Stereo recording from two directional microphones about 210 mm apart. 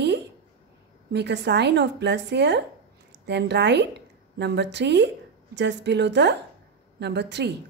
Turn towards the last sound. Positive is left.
turn(degrees=-55)  # may be behind; listen again after turning